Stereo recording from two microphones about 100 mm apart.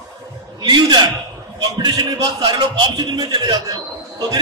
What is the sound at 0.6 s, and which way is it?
A man's voice, 45° right (ahead or behind).